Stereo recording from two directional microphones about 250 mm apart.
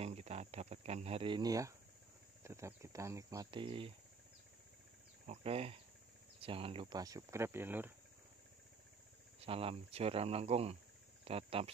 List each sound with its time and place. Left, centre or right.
0.0 s cricket: right
2.4 s speech: centre
5.2 s speech: right; by 7.9 s centre
9.4 s speech: right